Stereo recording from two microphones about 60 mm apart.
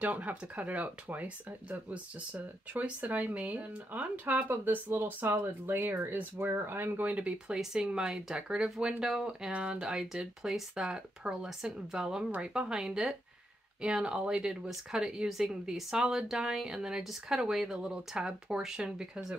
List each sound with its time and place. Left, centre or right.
0.0 s speech: right; by 19.3 s centre